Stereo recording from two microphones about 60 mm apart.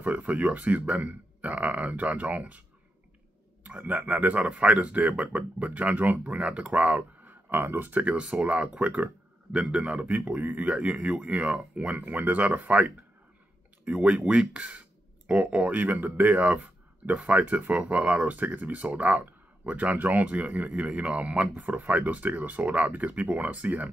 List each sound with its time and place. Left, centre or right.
0.0 s speech: right
3.6 s speech: right
7.4 s speech: right